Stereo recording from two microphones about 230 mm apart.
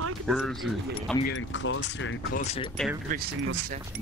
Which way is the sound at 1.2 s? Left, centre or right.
Left.